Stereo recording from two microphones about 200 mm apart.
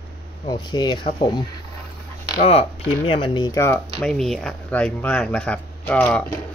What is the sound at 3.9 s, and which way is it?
Speech, centre (ahead or behind).